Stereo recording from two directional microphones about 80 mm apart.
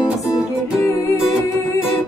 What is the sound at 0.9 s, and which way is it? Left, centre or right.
Music, left.